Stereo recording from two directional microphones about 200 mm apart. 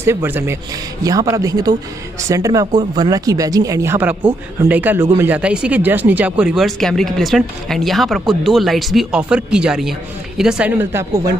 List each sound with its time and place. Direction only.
0.0 s speech: 10° right (ahead or behind)